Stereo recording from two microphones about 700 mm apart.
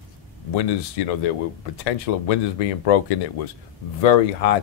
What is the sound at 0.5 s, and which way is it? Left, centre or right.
Speech, left.